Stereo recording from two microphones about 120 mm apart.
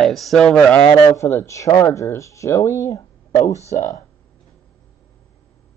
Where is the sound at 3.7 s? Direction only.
90° left.